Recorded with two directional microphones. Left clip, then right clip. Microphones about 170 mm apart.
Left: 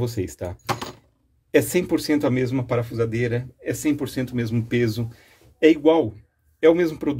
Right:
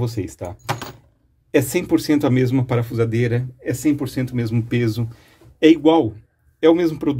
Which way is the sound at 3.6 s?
Centre (ahead or behind).